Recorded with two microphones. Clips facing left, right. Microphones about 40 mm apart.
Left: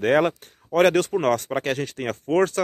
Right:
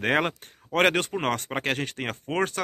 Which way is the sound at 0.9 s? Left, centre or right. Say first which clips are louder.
Left 5 dB; right.